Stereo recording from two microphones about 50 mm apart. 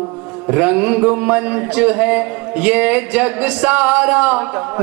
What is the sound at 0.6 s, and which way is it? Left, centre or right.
Speech, centre.